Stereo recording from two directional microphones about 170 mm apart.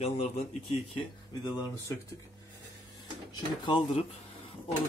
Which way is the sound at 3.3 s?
25° left (ahead or behind).